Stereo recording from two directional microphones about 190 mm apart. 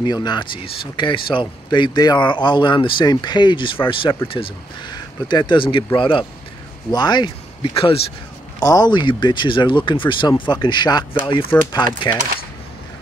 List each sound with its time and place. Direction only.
0.0 s speech: 20° left (ahead or behind)